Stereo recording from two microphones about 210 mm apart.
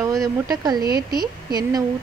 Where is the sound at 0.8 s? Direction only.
45° right (ahead or behind).